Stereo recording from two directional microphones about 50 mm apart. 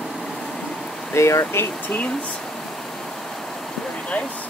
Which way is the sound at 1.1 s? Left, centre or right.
Left.